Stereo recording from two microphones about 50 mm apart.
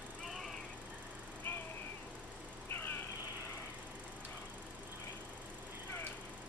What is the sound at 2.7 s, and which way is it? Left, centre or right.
Cat, left.